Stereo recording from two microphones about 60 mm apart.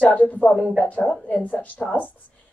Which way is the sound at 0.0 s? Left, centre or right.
Left.